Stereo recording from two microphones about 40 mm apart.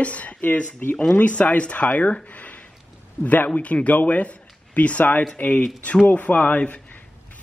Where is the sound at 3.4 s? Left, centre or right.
Left.